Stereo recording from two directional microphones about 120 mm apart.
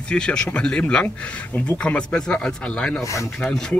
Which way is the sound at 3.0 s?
25° left (ahead or behind).